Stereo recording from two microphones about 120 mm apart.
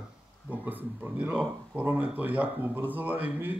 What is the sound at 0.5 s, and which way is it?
Speech, 15° right (ahead or behind).